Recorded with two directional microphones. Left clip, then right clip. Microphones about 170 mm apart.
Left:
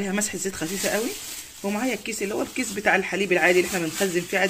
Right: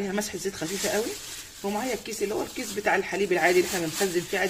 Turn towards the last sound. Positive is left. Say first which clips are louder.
# left 3 dB
turn(degrees=25)  # may be behind; listen again after turning